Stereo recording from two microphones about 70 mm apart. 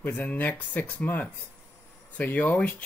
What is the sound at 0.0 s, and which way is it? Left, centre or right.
Speech, left.